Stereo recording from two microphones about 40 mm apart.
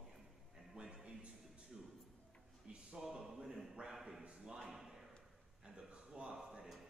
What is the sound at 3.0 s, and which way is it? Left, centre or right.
Speech, centre.